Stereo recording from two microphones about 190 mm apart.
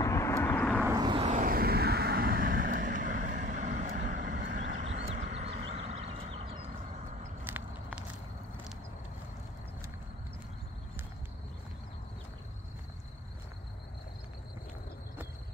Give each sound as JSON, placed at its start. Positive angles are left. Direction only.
{"t": 0.0, "sound": "vehicle", "side_deg": 15}
{"t": 0.8, "sound": "vehicle", "side_deg": -20}
{"t": 1.4, "sound": "vehicle", "side_deg": -50}
{"t": 5.7, "sound": "a sound", "side_deg": -35}
{"t": 7.4, "sound": "walk", "side_deg": -10}